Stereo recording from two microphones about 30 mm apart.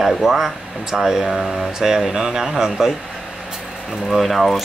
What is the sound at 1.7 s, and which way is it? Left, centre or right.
Speech, centre.